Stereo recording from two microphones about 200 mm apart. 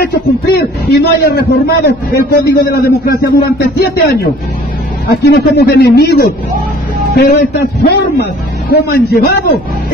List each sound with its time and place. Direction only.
0.0 s a man's voice: 50° left (ahead or behind)